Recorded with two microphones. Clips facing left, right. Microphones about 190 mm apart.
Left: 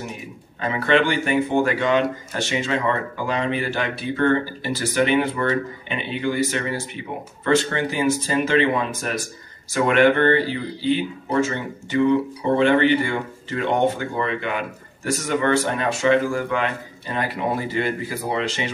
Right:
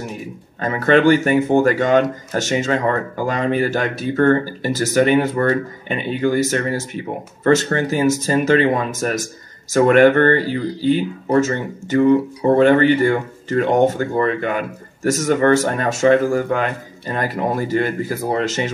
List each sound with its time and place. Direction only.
0.6 s speech: 45° right (ahead or behind)